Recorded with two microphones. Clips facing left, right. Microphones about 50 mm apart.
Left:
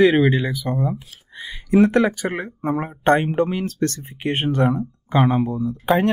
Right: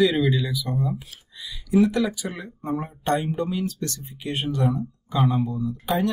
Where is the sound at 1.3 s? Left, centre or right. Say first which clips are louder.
Left 7 dB; left.